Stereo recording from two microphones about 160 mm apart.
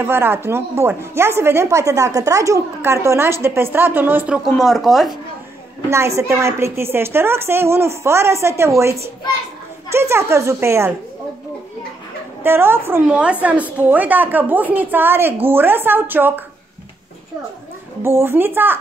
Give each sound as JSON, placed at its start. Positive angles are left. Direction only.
{"t": 0.0, "sound": "speech", "side_deg": -15}
{"t": 4.6, "sound": "speech", "side_deg": 0}
{"t": 5.9, "sound": "speech", "side_deg": -15}
{"t": 12.4, "sound": "speech", "side_deg": -15}
{"t": 18.0, "sound": "speech", "side_deg": -15}